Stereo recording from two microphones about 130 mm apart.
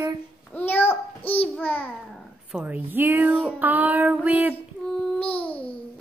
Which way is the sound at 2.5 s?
15° right (ahead or behind).